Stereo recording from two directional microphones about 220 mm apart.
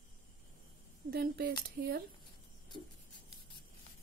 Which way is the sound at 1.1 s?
45° right (ahead or behind).